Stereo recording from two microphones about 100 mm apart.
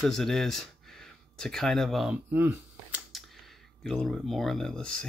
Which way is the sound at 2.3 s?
20° right (ahead or behind).